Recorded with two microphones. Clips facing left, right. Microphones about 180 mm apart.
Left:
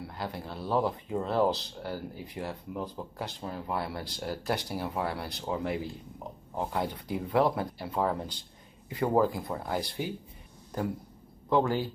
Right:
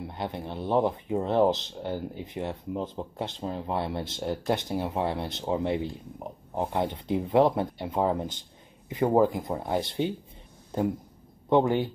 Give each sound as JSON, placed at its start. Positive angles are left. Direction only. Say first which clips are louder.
{"t": 0.0, "sound": "speech", "louder": "right 4 dB", "side_deg": -20}